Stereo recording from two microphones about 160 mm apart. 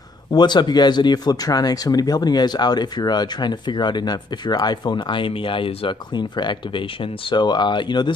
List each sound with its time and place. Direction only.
0.3 s speech: 25° left (ahead or behind)